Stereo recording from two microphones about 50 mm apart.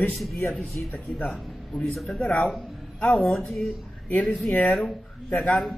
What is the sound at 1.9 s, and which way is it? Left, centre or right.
Speech, centre.